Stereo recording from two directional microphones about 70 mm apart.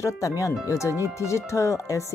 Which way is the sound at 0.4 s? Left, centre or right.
Left.